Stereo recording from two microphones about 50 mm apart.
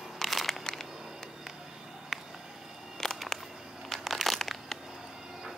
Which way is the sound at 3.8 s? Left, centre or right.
Centre.